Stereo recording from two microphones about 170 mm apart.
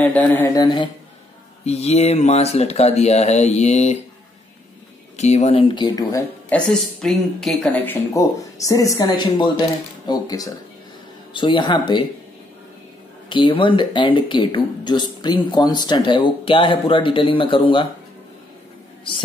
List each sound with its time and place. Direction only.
0.0 s speech: 10° left (ahead or behind)
0.6 s speech: 30° left (ahead or behind)
5.1 s speech: 40° left (ahead or behind); by 6.2 s 20° left (ahead or behind)
6.5 s speech: 5° left (ahead or behind); by 12.1 s 25° left (ahead or behind)
13.3 s speech: 30° left (ahead or behind)